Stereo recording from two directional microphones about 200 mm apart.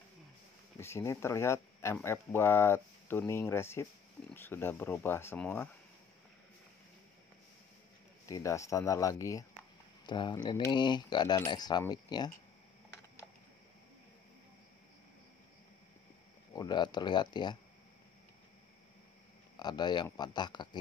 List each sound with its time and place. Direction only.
0.7 s speech: 15° left (ahead or behind)
8.3 s speech: 15° left (ahead or behind)
16.5 s speech: 20° left (ahead or behind)
19.5 s speech: 20° left (ahead or behind)